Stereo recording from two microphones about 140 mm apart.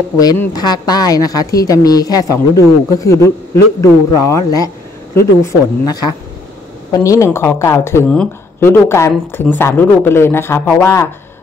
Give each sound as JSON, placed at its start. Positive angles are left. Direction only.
{"t": 0.5, "sound": "a woman's voice", "side_deg": 30}